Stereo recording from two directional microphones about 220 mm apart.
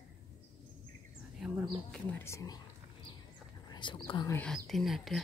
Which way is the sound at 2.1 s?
10° left (ahead or behind).